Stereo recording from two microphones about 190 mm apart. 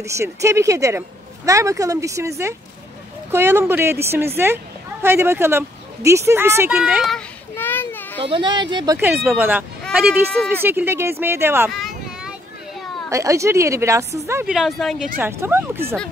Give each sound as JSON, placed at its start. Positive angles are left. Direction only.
{"t": 0.0, "sound": "speech", "side_deg": -15}
{"t": 8.2, "sound": "speech", "side_deg": -25}
{"t": 11.7, "sound": "a sound", "side_deg": 0}
{"t": 13.1, "sound": "speech", "side_deg": -15}
{"t": 14.5, "sound": "speech", "side_deg": 0}
{"t": 15.1, "sound": "speech", "side_deg": -10}